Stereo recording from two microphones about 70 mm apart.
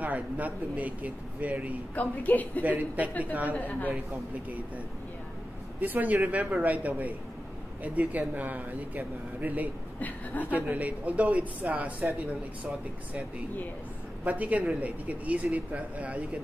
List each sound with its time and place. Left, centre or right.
0.0 s speech: right
2.0 s a woman's voice: left
2.6 s speech: right
3.5 s a woman's voice: left
5.8 s speech: right
9.9 s a woman's voice: left
10.5 s speech: right
14.2 s speech: right